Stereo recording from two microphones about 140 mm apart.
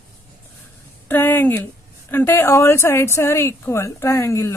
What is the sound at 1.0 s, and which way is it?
A woman's voice, 15° left (ahead or behind).